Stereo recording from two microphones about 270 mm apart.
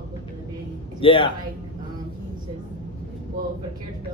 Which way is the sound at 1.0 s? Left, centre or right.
Centre.